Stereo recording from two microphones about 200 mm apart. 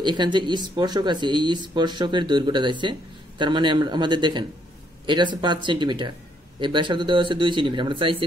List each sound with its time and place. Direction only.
0.0 s speech: 20° right (ahead or behind)